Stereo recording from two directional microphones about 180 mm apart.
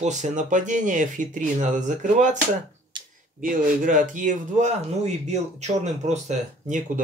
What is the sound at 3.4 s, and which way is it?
Speech, 50° right (ahead or behind).